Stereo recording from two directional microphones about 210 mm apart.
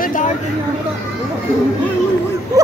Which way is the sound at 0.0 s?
40° left (ahead or behind).